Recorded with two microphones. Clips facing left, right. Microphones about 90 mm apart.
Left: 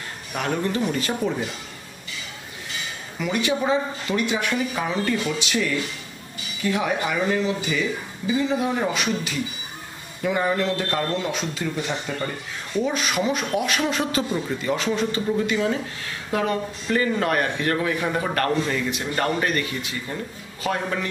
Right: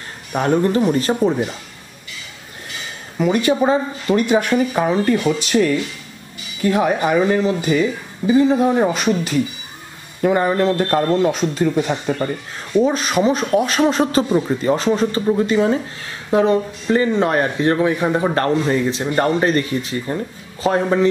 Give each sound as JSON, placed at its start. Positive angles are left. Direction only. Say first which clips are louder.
{"t": 0.3, "sound": "speech", "louder": "right 8 dB", "side_deg": -35}
{"t": 3.2, "sound": "a man's voice", "louder": "right 8 dB", "side_deg": -45}